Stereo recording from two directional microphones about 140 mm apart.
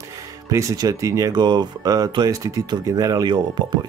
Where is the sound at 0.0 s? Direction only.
25° right (ahead or behind).